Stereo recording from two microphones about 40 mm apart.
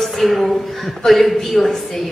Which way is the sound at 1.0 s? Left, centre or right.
Centre.